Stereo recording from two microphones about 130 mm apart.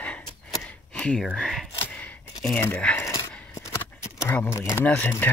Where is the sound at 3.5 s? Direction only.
20° left (ahead or behind).